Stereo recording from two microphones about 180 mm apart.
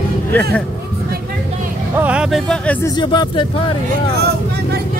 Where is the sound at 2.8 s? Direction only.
25° left (ahead or behind).